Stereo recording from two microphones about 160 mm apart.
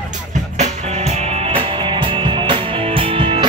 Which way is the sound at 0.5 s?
45° right (ahead or behind).